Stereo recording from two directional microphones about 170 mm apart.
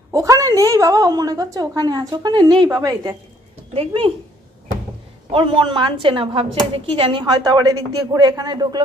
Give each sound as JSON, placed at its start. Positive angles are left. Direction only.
{"t": 0.1, "sound": "a woman's voice", "side_deg": -20}
{"t": 3.7, "sound": "a man's voice", "side_deg": -35}
{"t": 5.3, "sound": "a man's voice", "side_deg": -30}